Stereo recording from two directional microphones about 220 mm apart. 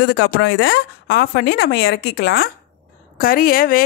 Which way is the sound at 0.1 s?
50° left (ahead or behind).